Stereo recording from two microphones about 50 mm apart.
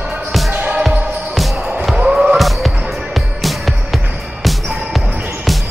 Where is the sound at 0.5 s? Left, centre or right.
Right.